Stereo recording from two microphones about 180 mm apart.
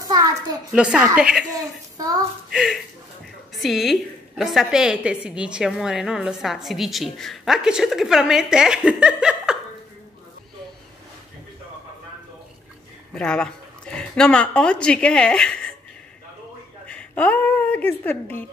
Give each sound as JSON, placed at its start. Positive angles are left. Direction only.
{"t": 0.0, "sound": "a sound", "side_deg": -20}
{"t": 0.7, "sound": "a woman's voice", "side_deg": -5}
{"t": 1.5, "sound": "a woman's voice", "side_deg": -20}
{"t": 2.5, "sound": "a woman's voice", "side_deg": 0}
{"t": 13.1, "sound": "a woman's voice", "side_deg": 5}
{"t": 16.8, "sound": "a woman's voice", "side_deg": 5}